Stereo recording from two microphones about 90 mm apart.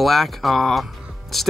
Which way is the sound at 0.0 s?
Centre (ahead or behind).